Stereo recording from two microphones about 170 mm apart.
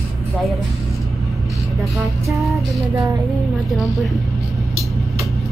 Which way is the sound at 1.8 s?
Centre (ahead or behind).